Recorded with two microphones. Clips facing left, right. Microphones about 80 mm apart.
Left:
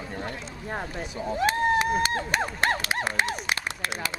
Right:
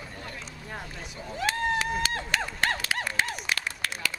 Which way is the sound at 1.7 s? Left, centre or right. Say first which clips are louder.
Left 5 dB; centre.